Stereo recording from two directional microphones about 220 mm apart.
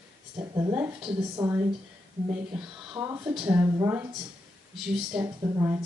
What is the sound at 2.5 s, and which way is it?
A woman's voice, 15° right (ahead or behind).